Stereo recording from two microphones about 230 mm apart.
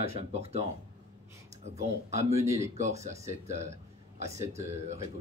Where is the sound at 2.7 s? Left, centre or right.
Right.